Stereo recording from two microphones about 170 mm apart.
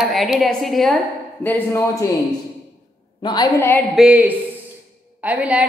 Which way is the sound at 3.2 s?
25° left (ahead or behind).